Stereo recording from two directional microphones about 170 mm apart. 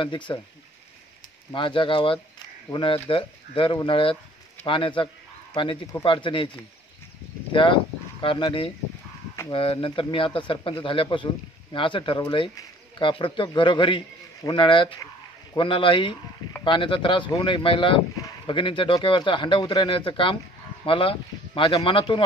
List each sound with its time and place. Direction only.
0.0 s speech: 30° left (ahead or behind)
1.5 s speech: 30° left (ahead or behind)
7.5 s speech: 30° left (ahead or behind)